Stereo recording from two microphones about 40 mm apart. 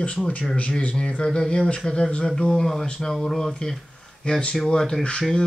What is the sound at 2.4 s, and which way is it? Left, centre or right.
Mantra, centre.